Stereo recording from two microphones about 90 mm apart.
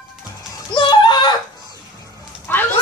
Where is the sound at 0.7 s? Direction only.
60° left (ahead or behind).